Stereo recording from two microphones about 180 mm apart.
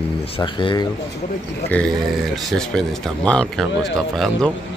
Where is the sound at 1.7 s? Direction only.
10° left (ahead or behind).